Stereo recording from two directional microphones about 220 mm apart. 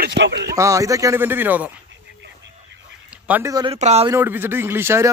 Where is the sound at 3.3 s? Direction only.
15° right (ahead or behind).